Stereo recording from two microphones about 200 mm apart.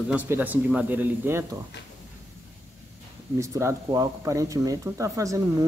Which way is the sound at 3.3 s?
15° right (ahead or behind).